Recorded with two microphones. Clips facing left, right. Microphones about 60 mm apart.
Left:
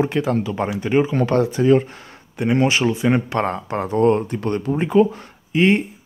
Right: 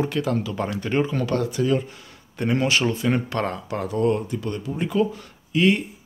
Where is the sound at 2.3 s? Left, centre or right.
Centre; by 4.8 s left.